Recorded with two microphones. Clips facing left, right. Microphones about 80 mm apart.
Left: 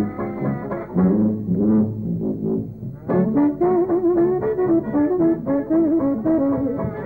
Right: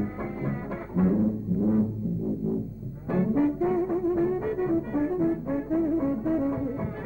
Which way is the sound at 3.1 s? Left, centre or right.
Left.